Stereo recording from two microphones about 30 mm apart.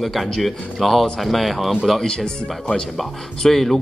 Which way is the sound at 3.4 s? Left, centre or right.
Centre.